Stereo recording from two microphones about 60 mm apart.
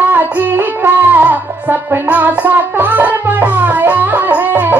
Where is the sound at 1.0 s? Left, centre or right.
Right.